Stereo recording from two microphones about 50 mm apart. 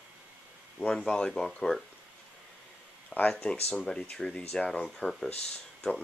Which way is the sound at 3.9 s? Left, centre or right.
Centre.